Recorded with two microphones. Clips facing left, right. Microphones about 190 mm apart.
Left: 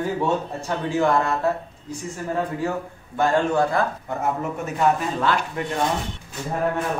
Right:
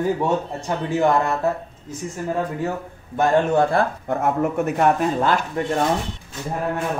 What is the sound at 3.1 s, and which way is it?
Speech, 20° right (ahead or behind).